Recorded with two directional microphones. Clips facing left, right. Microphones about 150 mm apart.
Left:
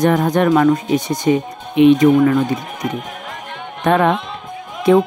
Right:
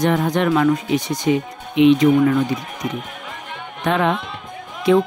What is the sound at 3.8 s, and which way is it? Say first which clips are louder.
Speech: left 4 dB; 50° left (ahead or behind).